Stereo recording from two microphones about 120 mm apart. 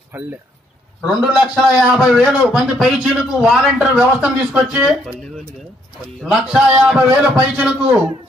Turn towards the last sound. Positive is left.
turn(degrees=-5)  # may be behind; listen again after turning